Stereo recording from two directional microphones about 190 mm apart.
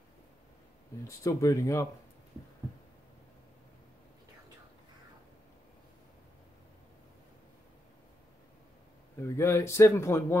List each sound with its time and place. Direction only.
1.0 s speech: 15° left (ahead or behind)
9.2 s speech: 15° left (ahead or behind)